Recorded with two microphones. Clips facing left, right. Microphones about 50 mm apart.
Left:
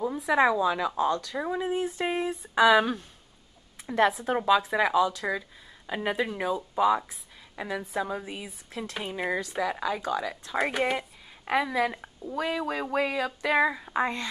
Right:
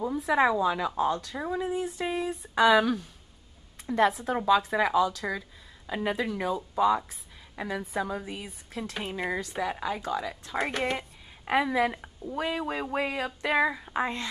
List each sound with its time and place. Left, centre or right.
0.0 s a woman's voice: centre
1.3 s speech: centre
1.6 s speech: left
2.5 s speech: centre
3.8 s a woman's voice: centre
11.4 s a woman's voice: centre
12.4 s a sound: centre
13.6 s a woman's voice: centre
14.0 s a woman's voice: left